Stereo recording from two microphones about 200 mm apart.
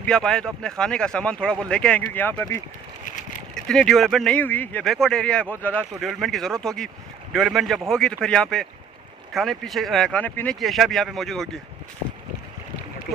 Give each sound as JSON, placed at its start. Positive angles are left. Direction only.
{"t": 0.0, "sound": "speech", "side_deg": 5}
{"t": 3.5, "sound": "speech", "side_deg": 5}